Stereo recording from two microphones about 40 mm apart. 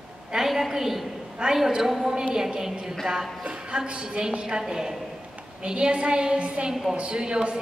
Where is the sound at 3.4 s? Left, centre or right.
Right.